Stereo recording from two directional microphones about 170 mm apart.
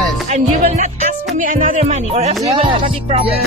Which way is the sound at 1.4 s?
50° right (ahead or behind).